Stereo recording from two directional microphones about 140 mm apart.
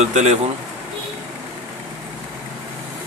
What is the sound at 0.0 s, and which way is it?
Speech, 55° right (ahead or behind).